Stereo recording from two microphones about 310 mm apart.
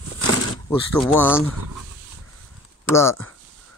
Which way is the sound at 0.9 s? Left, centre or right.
Centre.